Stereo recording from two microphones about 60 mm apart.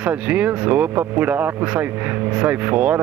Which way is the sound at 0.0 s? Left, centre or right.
Right.